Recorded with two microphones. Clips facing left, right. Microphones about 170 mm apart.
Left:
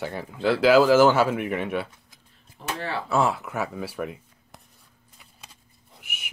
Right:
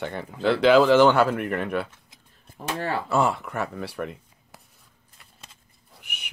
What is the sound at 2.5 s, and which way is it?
Speech, 50° right (ahead or behind).